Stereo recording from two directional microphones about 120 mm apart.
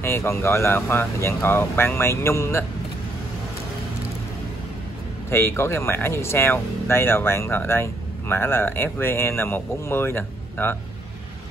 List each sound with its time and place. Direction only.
0.0 s speech: 20° left (ahead or behind)
5.3 s speech: 20° left (ahead or behind)